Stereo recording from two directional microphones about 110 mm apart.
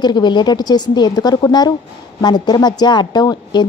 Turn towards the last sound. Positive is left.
turn(degrees=40)  # may be behind; listen again after turning